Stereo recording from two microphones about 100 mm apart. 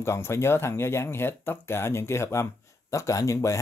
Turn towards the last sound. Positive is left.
turn(degrees=30)  # may be behind; listen again after turning